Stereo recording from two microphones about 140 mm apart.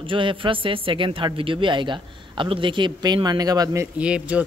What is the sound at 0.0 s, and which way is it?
Speech, 35° right (ahead or behind).